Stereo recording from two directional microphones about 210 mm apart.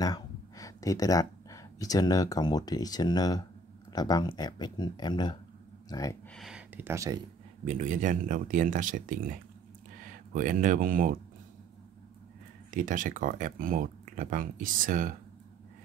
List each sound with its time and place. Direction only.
0.0 s speech: 15° left (ahead or behind)
6.3 s speech: centre (ahead or behind)
7.6 s speech: 35° right (ahead or behind)
12.7 s speech: 40° right (ahead or behind)